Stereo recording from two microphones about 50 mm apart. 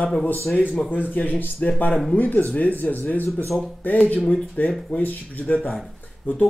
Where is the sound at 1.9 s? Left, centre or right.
Centre.